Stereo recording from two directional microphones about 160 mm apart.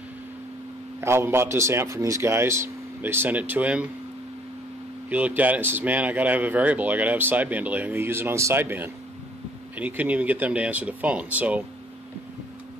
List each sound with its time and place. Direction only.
1.0 s speech: 15° right (ahead or behind)
5.1 s speech: 10° right (ahead or behind)